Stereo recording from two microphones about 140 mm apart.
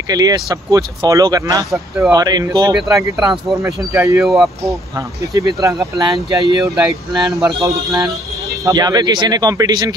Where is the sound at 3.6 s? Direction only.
20° right (ahead or behind).